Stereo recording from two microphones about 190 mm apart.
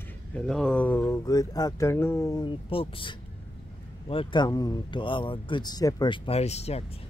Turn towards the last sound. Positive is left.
turn(degrees=35)  # may be behind; listen again after turning